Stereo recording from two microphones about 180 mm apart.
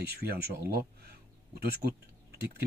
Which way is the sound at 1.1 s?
60° right (ahead or behind).